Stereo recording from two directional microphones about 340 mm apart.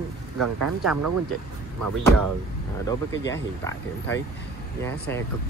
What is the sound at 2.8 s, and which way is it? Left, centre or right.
Speech, centre.